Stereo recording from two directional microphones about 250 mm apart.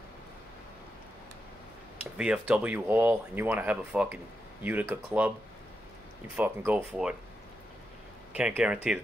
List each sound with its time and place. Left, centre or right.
2.1 s speech: centre
6.3 s speech: centre
8.4 s speech: centre